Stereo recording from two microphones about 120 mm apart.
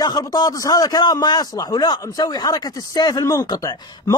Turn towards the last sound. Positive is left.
turn(degrees=30)  # may be behind; listen again after turning